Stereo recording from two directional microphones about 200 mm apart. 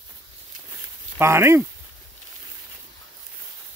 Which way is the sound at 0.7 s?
10° right (ahead or behind).